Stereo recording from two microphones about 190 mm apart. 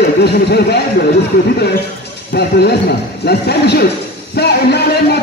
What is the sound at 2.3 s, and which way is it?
A man's voice, 60° left (ahead or behind).